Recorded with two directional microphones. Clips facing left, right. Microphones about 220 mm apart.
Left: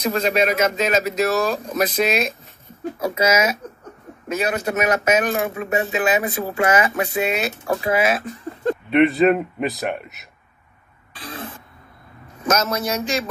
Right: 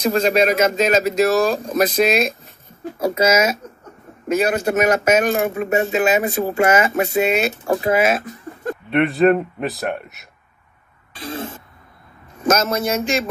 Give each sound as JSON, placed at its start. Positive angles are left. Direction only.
{"t": 0.0, "sound": "a man's voice", "side_deg": -30}
{"t": 0.9, "sound": "a man's voice", "side_deg": -30}
{"t": 7.8, "sound": "speech", "side_deg": -45}
{"t": 8.9, "sound": "a man's voice", "side_deg": 0}
{"t": 11.1, "sound": "throat clearing", "side_deg": -25}
{"t": 12.4, "sound": "speech", "side_deg": -25}